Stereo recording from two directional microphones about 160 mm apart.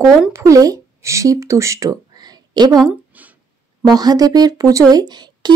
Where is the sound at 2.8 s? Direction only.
10° right (ahead or behind).